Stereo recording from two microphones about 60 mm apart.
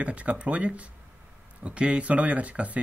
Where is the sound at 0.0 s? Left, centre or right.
Right.